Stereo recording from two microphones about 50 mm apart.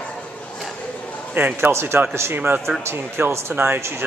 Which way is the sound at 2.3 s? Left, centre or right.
Right.